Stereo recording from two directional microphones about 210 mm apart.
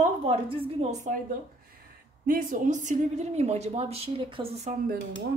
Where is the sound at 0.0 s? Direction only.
30° right (ahead or behind).